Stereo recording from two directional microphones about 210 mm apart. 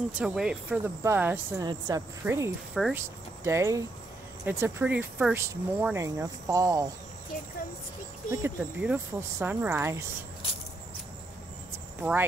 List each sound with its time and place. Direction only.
0.2 s speech: 5° right (ahead or behind)
2.7 s speech: centre (ahead or behind)
3.4 s speech: 15° right (ahead or behind)
8.3 s speech: 10° right (ahead or behind)
12.0 s speech: 5° right (ahead or behind)